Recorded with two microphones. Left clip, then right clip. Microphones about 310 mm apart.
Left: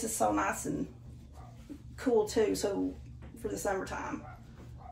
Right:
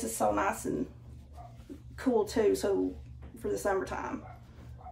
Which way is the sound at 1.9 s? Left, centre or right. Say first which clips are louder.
Left 1 dB; centre.